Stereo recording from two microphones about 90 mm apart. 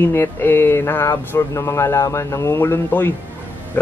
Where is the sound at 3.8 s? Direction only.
20° left (ahead or behind).